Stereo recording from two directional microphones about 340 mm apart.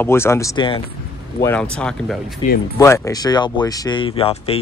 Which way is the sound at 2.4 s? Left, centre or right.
Centre.